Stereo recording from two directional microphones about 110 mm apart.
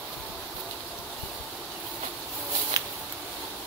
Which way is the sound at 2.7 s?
35° right (ahead or behind).